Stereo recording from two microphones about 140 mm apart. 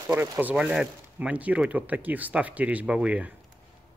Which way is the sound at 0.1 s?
10° right (ahead or behind).